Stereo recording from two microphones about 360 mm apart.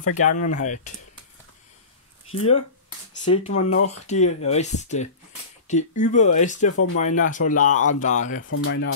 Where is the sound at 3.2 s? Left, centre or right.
Centre.